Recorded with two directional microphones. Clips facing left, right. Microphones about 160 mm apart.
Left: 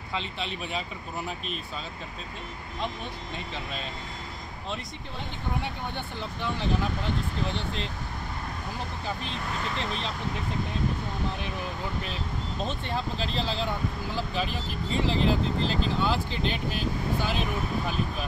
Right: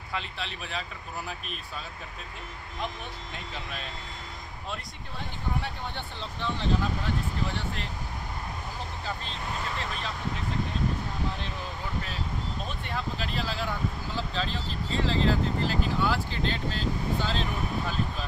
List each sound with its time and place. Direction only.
0.4 s speech: 5° left (ahead or behind)
5.6 s speech: 15° left (ahead or behind)
9.8 s speech: 20° left (ahead or behind)
12.6 s speech: 25° left (ahead or behind)
14.1 s speech: 15° left (ahead or behind)